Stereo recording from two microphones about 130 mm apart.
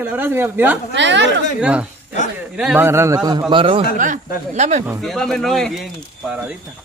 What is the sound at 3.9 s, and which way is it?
Speech, 75° right (ahead or behind).